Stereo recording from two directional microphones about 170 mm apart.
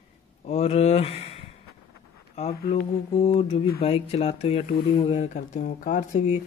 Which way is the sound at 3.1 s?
35° left (ahead or behind).